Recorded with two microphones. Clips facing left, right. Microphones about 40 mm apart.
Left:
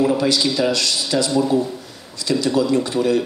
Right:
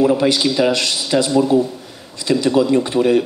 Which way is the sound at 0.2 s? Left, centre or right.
Right.